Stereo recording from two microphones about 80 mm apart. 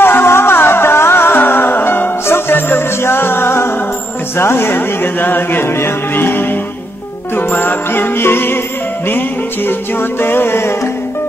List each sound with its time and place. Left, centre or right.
0.0 s music: left
4.4 s speech: left
7.3 s music: left
9.7 s speech: left